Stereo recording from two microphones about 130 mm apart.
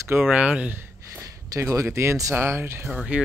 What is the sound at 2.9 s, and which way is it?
Speech, 5° right (ahead or behind).